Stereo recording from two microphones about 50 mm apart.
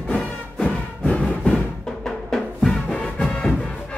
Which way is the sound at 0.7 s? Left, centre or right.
Left.